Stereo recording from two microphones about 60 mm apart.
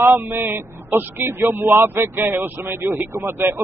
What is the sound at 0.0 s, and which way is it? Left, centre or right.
Speech, right.